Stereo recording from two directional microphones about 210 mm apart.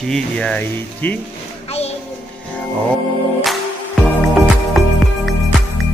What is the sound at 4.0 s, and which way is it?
Music, 5° right (ahead or behind).